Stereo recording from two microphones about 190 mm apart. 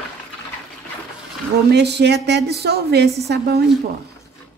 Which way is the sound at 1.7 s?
60° right (ahead or behind).